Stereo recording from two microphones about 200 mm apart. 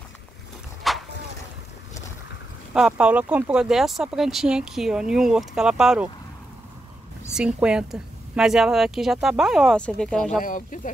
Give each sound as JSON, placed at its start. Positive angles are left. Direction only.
{"t": 0.8, "sound": "vehicle", "side_deg": 0}
{"t": 2.7, "sound": "speech", "side_deg": -5}
{"t": 7.3, "sound": "speech", "side_deg": -5}
{"t": 10.4, "sound": "speech", "side_deg": 40}